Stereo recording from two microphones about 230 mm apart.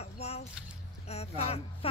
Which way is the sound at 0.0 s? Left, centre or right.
Left.